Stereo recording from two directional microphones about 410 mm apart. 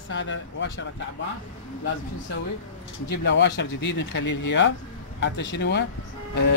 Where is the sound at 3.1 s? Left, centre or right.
Left.